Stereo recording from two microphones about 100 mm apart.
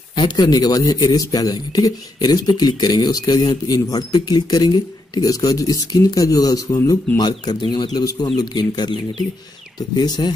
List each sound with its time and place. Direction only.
0.1 s speech: 45° left (ahead or behind)